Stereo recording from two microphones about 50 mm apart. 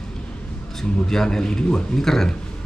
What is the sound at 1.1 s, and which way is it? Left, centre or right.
Speech, centre.